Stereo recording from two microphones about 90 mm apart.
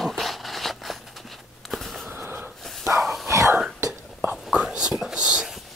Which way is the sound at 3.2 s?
30° right (ahead or behind).